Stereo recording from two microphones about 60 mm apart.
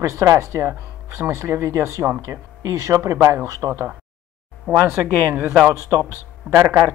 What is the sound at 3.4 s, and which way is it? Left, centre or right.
Speech, right.